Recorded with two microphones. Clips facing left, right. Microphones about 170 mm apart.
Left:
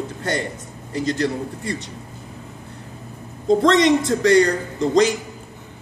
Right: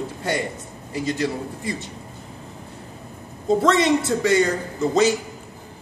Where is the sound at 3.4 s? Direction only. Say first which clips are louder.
Left 3 dB; 5° right (ahead or behind).